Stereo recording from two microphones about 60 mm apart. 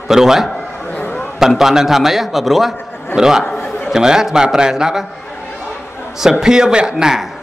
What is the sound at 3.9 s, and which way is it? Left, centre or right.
A man's voice, centre.